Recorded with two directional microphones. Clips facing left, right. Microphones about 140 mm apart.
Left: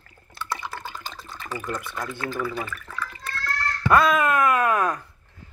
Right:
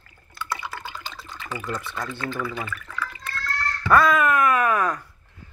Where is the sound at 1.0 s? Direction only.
45° left (ahead or behind).